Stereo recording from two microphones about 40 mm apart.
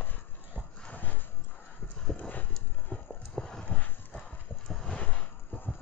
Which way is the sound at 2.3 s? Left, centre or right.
Left.